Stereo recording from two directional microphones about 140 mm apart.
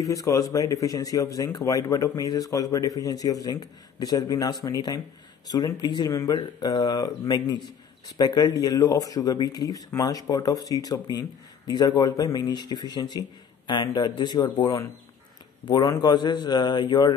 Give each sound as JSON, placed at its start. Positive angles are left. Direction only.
{"t": 0.0, "sound": "a man's voice", "side_deg": 25}